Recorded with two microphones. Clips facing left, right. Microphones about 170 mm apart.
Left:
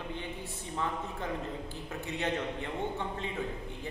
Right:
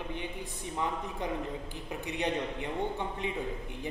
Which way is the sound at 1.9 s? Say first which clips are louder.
Right 1 dB; 15° right (ahead or behind).